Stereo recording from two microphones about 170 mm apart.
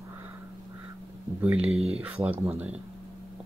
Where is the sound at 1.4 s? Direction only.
5° right (ahead or behind).